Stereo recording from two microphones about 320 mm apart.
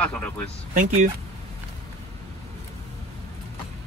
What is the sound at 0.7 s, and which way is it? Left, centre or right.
Speech, right.